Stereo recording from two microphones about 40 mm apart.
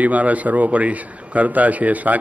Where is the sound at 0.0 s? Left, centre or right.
Right.